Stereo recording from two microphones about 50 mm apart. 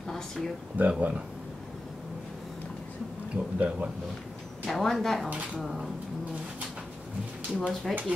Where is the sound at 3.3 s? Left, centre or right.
Right.